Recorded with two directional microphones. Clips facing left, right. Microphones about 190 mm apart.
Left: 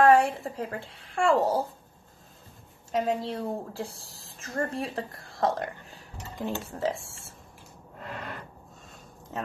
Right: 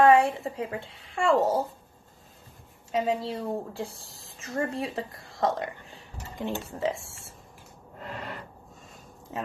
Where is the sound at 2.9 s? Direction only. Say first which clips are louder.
Even; 5° right (ahead or behind).